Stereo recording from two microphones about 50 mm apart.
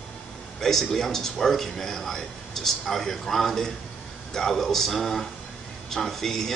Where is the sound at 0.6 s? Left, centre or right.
Centre.